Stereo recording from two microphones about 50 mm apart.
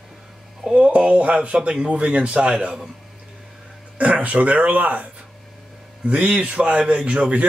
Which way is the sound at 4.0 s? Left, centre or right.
Right.